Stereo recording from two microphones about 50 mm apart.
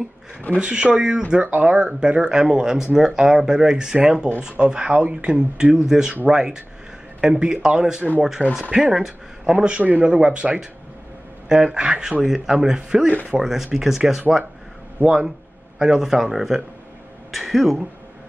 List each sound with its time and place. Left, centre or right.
0.6 s speech: right; by 17.7 s centre